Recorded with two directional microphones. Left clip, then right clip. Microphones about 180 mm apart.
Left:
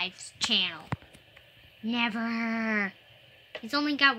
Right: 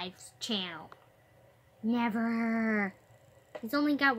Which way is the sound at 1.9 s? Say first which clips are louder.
Left 2 dB; centre (ahead or behind).